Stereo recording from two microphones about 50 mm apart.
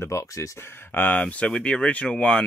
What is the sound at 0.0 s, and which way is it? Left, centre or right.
Speech, left.